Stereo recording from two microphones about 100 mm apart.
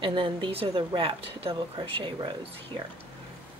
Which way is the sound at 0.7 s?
50° right (ahead or behind).